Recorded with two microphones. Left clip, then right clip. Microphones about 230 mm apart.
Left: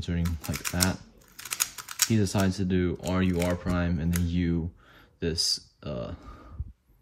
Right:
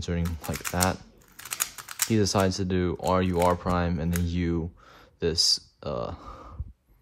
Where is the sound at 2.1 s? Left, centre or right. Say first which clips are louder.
Right 9 dB; right.